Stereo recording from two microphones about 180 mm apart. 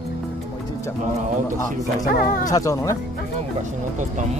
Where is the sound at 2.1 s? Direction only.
55° left (ahead or behind).